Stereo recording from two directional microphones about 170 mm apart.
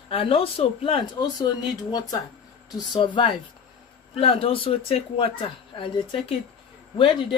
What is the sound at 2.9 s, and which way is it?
Speech, 30° left (ahead or behind).